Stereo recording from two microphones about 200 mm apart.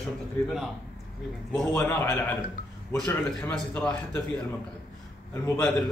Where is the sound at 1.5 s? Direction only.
10° left (ahead or behind).